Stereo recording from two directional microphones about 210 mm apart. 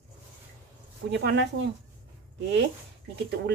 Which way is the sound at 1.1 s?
55° right (ahead or behind).